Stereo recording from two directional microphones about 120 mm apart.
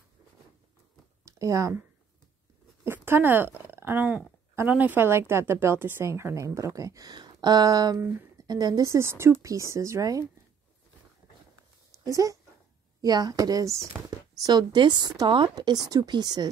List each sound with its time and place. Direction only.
1.2 s speech: 25° right (ahead or behind)
2.8 s a woman's voice: 20° right (ahead or behind)
8.0 s a sound: 20° right (ahead or behind)
8.5 s a woman's voice: 35° right (ahead or behind)
12.0 s a woman's voice: 30° right (ahead or behind)